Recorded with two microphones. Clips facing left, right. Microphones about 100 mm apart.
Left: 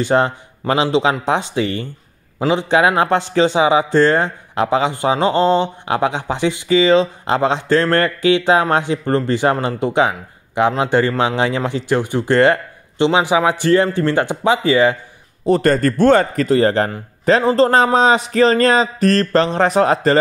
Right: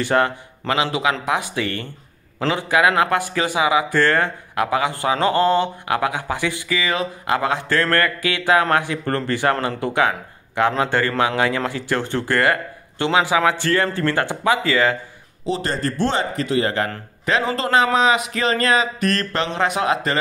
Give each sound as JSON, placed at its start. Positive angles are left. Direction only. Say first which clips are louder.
{"t": 0.0, "sound": "a man's voice", "louder": "left 3 dB", "side_deg": 20}
{"t": 2.7, "sound": "speech", "louder": "left 2 dB", "side_deg": 25}
{"t": 15.4, "sound": "a man's voice", "louder": "left 9 dB", "side_deg": 50}